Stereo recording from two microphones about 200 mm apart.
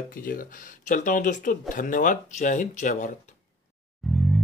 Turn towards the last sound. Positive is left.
turn(degrees=0)  # may be behind; listen again after turning